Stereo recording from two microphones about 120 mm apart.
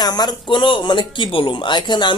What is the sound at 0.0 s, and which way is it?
Speech, 35° left (ahead or behind).